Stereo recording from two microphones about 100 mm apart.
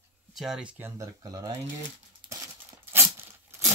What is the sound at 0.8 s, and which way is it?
Speech, 35° right (ahead or behind).